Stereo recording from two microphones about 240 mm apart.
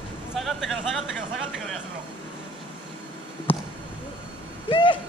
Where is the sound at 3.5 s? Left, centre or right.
Left.